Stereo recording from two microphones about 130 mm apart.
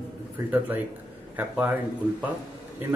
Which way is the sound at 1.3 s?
15° right (ahead or behind).